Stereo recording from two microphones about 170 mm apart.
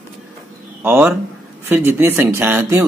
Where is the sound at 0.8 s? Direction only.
10° right (ahead or behind).